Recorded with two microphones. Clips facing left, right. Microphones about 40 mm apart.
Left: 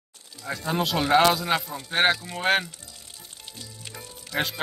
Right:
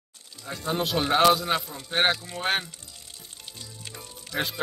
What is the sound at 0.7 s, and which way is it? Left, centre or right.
Speech, left.